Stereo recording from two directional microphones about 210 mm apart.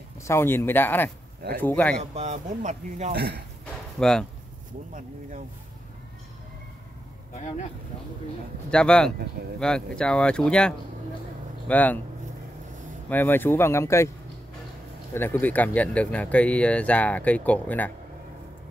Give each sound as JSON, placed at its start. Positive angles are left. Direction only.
{"t": 0.2, "sound": "speech", "side_deg": 10}
{"t": 2.1, "sound": "speech", "side_deg": -35}
{"t": 3.1, "sound": "speech", "side_deg": -50}
{"t": 4.0, "sound": "speech", "side_deg": 5}
{"t": 7.3, "sound": "speech", "side_deg": 35}
{"t": 8.6, "sound": "speech", "side_deg": 5}
{"t": 13.1, "sound": "speech", "side_deg": 10}
{"t": 15.1, "sound": "speech", "side_deg": 10}